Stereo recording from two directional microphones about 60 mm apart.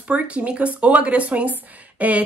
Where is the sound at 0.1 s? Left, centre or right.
Right.